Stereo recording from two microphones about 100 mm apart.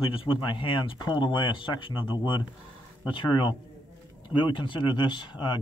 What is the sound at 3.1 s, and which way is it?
Speech, 50° left (ahead or behind).